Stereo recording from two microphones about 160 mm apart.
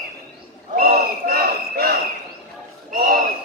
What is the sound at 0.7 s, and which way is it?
Battle cry, 70° right (ahead or behind).